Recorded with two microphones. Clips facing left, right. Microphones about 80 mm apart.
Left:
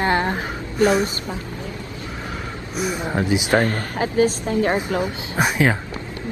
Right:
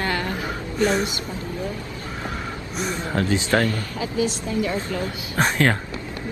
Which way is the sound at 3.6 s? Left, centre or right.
Left.